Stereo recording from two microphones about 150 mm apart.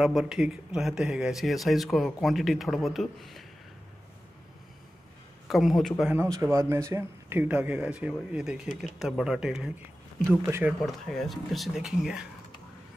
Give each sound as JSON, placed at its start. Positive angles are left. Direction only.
{"t": 0.0, "sound": "speech", "side_deg": 0}
{"t": 5.5, "sound": "speech", "side_deg": 0}
{"t": 6.3, "sound": "speech", "side_deg": -20}
{"t": 10.2, "sound": "speech", "side_deg": -15}
{"t": 10.8, "sound": "speech", "side_deg": 0}